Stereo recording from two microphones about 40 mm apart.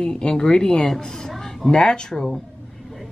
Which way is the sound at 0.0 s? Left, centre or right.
Left.